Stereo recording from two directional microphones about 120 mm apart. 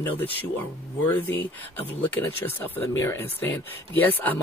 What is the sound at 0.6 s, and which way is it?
Speech, 15° left (ahead or behind).